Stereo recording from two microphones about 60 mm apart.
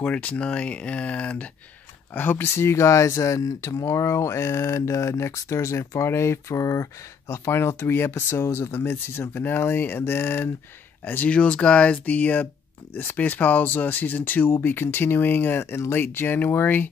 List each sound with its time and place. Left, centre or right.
0.0 s speech: left
2.1 s speech: left
11.1 s speech: left